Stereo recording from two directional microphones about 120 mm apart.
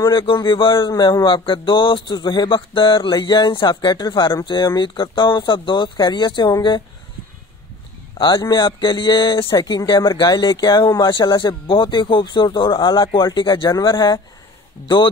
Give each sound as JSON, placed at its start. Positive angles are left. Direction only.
{"t": 0.1, "sound": "speech", "side_deg": 45}
{"t": 8.2, "sound": "speech", "side_deg": 40}